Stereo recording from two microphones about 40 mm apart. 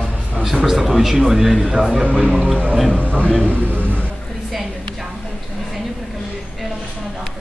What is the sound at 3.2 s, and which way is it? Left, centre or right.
Speech, left.